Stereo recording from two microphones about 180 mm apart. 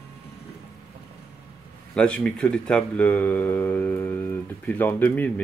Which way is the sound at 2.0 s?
5° left (ahead or behind).